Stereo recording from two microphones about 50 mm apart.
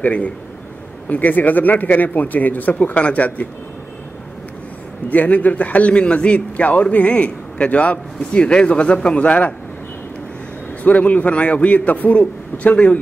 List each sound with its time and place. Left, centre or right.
0.0 s a man's voice: left
5.1 s a man's voice: left
10.8 s a man's voice: left